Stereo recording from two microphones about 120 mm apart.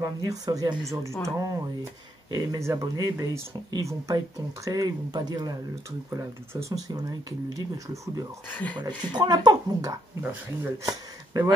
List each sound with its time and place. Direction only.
0.0 s speech: 30° right (ahead or behind)
8.5 s speech: 15° left (ahead or behind)
8.7 s speech: 40° right (ahead or behind)